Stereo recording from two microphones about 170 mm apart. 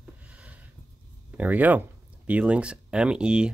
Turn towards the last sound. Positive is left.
turn(degrees=-5)  # may be behind; listen again after turning